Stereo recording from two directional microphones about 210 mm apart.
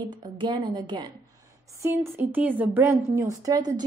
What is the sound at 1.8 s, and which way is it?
A woman's voice, 10° right (ahead or behind).